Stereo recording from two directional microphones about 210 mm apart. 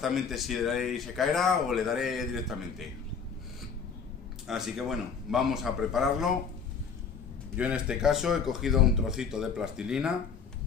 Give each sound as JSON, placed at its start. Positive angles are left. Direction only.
{"t": 0.0, "sound": "speech", "side_deg": 0}
{"t": 4.5, "sound": "speech", "side_deg": 0}
{"t": 7.5, "sound": "speech", "side_deg": -5}